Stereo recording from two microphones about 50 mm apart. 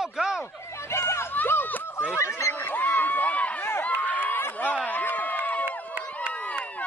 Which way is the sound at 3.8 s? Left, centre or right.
Left.